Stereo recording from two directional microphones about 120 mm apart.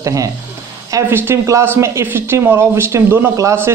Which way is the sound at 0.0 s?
25° right (ahead or behind).